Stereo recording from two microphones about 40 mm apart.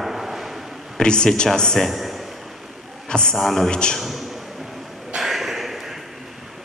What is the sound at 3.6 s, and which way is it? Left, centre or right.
Speech, left.